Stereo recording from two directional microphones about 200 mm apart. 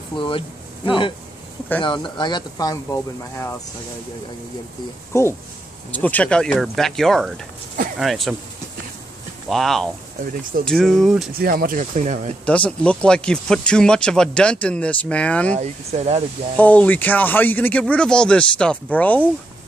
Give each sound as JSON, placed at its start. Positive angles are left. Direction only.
{"t": 0.1, "sound": "speech", "side_deg": 25}
{"t": 5.1, "sound": "speech", "side_deg": 15}
{"t": 9.5, "sound": "speech", "side_deg": 0}
{"t": 11.3, "sound": "speech", "side_deg": -45}
{"t": 12.4, "sound": "speech", "side_deg": 5}
{"t": 15.5, "sound": "speech", "side_deg": -35}
{"t": 16.5, "sound": "speech", "side_deg": 5}